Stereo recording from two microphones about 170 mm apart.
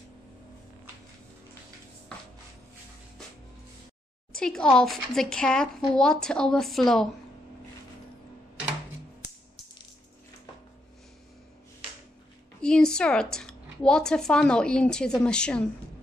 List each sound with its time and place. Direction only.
4.4 s a woman's voice: 5° left (ahead or behind)
12.6 s a woman's voice: 5° left (ahead or behind)